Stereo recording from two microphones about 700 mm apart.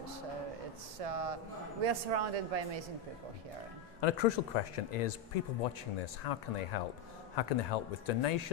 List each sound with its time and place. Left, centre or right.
1.0 s a man's voice: right
4.0 s speech: left